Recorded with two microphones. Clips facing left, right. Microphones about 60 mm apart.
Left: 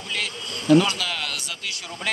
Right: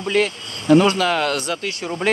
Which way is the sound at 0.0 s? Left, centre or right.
Right.